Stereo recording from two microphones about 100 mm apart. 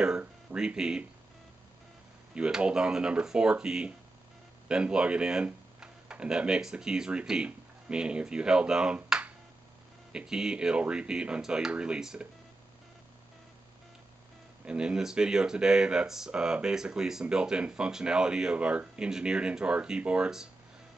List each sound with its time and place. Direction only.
0.0 s a sound: 10° right (ahead or behind)
2.3 s speech: 10° right (ahead or behind)
14.6 s speech: 10° right (ahead or behind)